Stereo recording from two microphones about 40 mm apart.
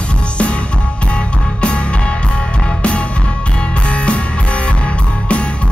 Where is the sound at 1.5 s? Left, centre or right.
Left.